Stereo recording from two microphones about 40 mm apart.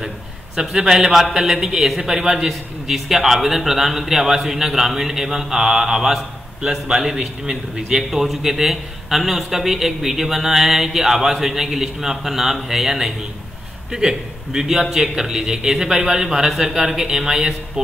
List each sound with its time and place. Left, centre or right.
0.6 s a man's voice: centre